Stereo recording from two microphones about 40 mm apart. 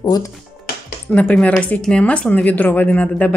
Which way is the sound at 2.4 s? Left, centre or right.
Left.